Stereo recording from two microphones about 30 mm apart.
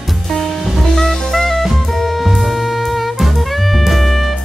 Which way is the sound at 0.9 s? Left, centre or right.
Centre.